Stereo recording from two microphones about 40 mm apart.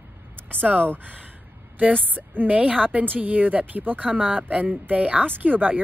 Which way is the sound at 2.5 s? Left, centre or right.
Right.